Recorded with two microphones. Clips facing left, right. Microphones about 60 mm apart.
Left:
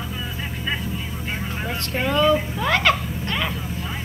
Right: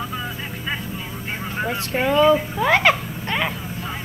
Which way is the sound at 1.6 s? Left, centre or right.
Centre.